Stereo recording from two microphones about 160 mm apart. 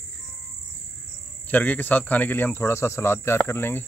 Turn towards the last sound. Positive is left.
turn(degrees=15)  # may be behind; listen again after turning